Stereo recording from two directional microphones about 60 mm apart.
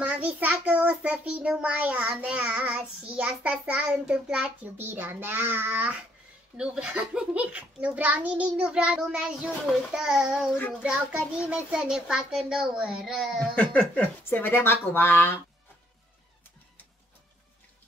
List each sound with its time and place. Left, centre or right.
0.0 s a child's voice: right
1.2 s child singing: centre
4.7 s a child's voice: right
6.5 s child singing: centre
9.9 s a child's voice: centre
13.0 s speech: centre
13.6 s a sound: left
14.3 s speech: left